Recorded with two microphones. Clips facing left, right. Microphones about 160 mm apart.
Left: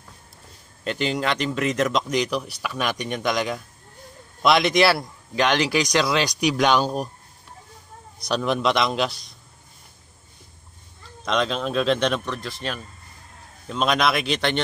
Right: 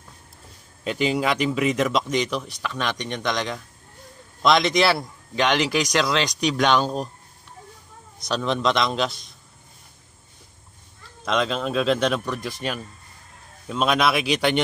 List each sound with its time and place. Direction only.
0.8 s speech: 5° right (ahead or behind)
8.3 s speech: 5° left (ahead or behind)
11.2 s speech: centre (ahead or behind)
12.4 s speech: 15° right (ahead or behind)